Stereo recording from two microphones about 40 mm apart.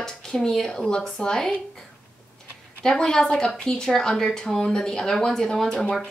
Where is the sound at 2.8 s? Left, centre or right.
Centre.